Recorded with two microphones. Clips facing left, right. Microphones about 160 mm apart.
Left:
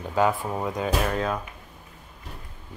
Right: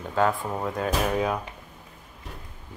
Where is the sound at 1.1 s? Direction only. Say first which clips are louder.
Right 1 dB; 10° right (ahead or behind).